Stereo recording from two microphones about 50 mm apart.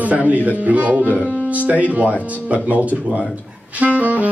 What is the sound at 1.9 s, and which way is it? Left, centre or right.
Speech, right.